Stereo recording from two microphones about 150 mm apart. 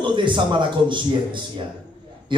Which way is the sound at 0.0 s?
30° right (ahead or behind).